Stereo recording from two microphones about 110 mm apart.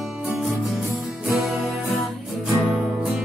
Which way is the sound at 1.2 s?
Centre (ahead or behind).